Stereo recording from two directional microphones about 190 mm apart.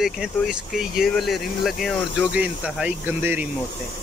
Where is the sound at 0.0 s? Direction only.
5° right (ahead or behind).